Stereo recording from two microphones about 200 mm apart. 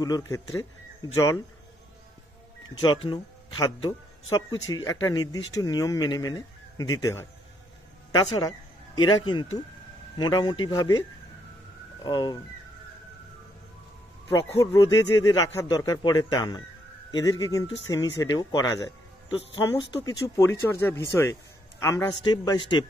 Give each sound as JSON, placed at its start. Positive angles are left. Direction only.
{"t": 0.0, "sound": "speech", "side_deg": 20}
{"t": 3.1, "sound": "speech", "side_deg": 20}
{"t": 12.0, "sound": "speech", "side_deg": 20}
{"t": 14.3, "sound": "speech", "side_deg": 15}